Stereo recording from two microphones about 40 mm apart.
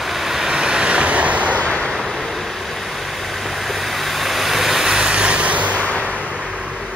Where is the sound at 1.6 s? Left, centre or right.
Left.